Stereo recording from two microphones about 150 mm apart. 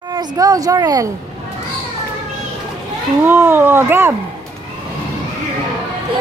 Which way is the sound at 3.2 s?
15° right (ahead or behind).